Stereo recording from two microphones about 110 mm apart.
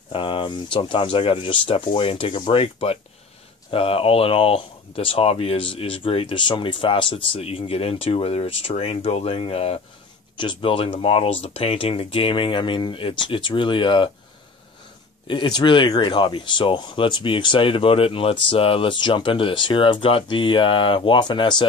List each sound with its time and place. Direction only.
0.1 s speech: 50° left (ahead or behind)
10.3 s speech: 45° left (ahead or behind)
15.2 s speech: 45° left (ahead or behind)